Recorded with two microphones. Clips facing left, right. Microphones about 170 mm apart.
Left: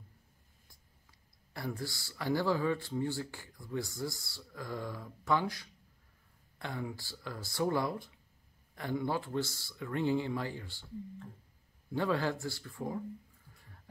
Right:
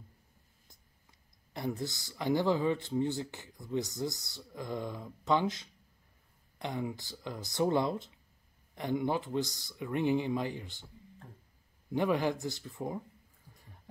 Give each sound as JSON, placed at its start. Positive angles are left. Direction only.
{"t": 1.5, "sound": "speech", "side_deg": -20}
{"t": 11.9, "sound": "speech", "side_deg": -15}